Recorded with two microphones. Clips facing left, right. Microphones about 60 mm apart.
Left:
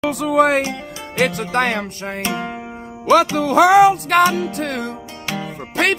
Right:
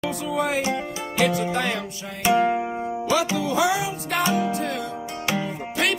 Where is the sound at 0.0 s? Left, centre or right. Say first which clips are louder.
Left 9 dB; left.